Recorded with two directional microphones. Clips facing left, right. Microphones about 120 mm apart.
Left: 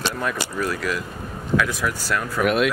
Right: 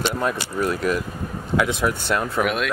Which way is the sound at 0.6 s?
25° right (ahead or behind).